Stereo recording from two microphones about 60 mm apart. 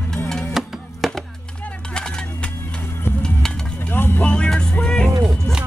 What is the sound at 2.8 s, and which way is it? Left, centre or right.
Music, left.